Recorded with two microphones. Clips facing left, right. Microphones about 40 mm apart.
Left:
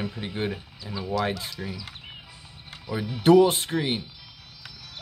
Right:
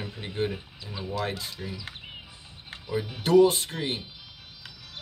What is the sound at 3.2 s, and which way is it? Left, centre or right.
Speech, left.